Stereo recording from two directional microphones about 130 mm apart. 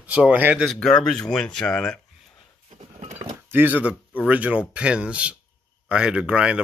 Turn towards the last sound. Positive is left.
turn(degrees=-10)  # may be behind; listen again after turning